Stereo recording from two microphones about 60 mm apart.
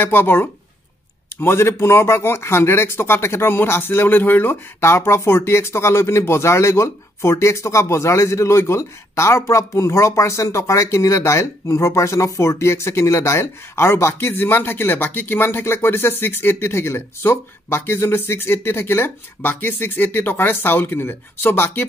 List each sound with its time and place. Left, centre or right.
0.0 s speech: left